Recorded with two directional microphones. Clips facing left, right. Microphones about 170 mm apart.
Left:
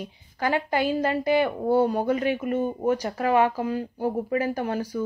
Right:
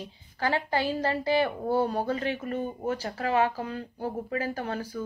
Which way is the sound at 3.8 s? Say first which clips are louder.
Left 6 dB; 40° left (ahead or behind).